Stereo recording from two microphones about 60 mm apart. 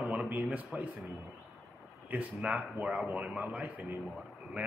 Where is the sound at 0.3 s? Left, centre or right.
Right.